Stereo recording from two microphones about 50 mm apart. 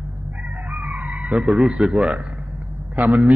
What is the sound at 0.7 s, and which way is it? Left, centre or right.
A man's voice, right.